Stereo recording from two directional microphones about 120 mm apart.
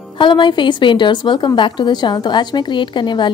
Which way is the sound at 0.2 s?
40° left (ahead or behind).